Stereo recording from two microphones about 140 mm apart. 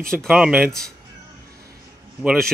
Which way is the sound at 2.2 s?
5° left (ahead or behind).